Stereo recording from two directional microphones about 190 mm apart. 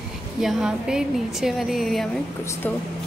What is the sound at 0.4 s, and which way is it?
A woman's voice, centre (ahead or behind).